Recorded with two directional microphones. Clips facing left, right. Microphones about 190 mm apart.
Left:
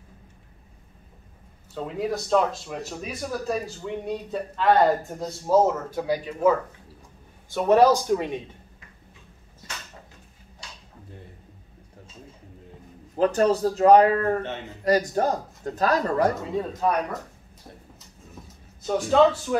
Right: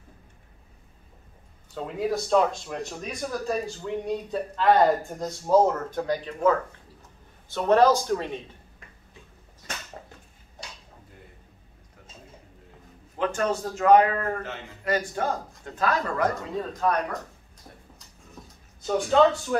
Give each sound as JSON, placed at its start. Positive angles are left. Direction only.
{"t": 1.7, "sound": "speech", "side_deg": 0}
{"t": 13.1, "sound": "a man's voice", "side_deg": 35}
{"t": 16.3, "sound": "speech", "side_deg": 10}
{"t": 17.9, "sound": "a sound", "side_deg": 0}